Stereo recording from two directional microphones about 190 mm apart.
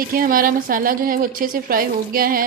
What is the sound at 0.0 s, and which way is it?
A woman's voice, 50° right (ahead or behind).